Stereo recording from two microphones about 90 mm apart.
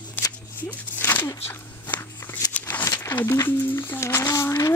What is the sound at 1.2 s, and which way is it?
Walk, 20° left (ahead or behind).